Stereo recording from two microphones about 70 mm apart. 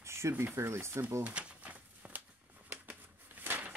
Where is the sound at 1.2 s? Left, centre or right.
Centre.